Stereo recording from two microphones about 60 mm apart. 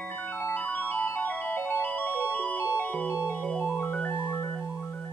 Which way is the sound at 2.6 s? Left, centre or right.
Left.